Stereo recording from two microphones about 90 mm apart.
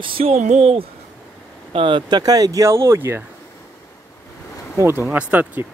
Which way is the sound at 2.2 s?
40° right (ahead or behind).